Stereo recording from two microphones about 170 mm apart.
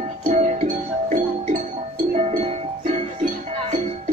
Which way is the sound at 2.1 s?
40° right (ahead or behind).